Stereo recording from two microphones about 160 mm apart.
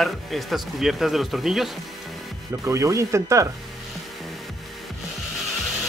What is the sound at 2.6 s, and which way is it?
Speech, 20° right (ahead or behind).